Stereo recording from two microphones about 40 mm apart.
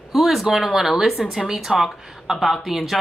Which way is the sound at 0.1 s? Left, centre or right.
Centre.